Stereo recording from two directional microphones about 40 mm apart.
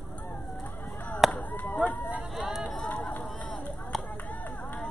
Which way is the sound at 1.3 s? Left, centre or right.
Left.